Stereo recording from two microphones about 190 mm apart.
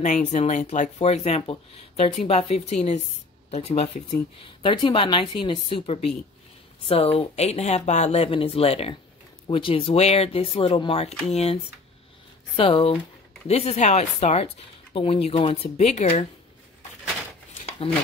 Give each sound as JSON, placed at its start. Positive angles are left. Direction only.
{"t": 0.0, "sound": "speech", "side_deg": 40}